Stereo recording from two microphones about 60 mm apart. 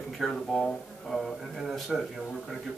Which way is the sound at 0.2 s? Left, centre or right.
Centre.